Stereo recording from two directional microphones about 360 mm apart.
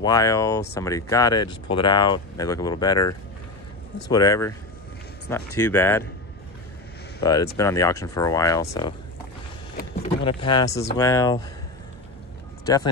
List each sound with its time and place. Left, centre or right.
0.0 s speech: centre
5.6 s speech: centre
7.2 s speech: centre
10.2 s speech: centre
12.6 s speech: centre